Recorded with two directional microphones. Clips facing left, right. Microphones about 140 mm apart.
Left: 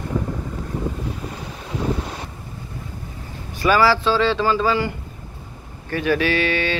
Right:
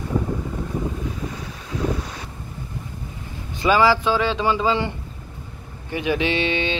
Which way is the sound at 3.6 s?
20° right (ahead or behind).